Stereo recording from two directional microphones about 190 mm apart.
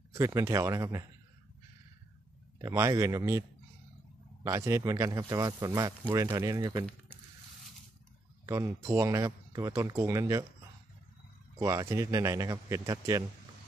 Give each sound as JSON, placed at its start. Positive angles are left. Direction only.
{"t": 0.1, "sound": "speech", "side_deg": -15}
{"t": 2.6, "sound": "speech", "side_deg": -15}
{"t": 8.5, "sound": "speech", "side_deg": -15}
{"t": 11.5, "sound": "speech", "side_deg": -15}